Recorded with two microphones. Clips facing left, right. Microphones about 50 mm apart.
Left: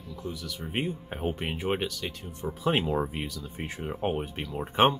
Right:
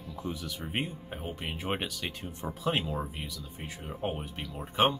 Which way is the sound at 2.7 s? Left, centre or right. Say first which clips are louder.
Left 5 dB; left.